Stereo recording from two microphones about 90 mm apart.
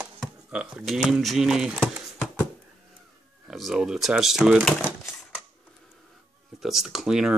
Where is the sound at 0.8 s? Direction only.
Centre (ahead or behind).